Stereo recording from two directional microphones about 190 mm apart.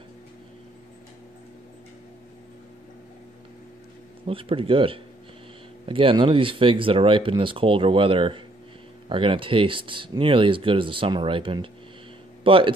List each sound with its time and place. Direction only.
4.3 s speech: 30° right (ahead or behind)